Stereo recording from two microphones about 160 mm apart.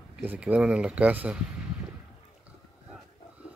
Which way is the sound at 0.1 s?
10° right (ahead or behind).